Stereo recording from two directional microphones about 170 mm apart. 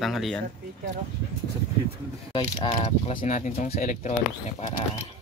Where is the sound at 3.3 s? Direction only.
40° left (ahead or behind).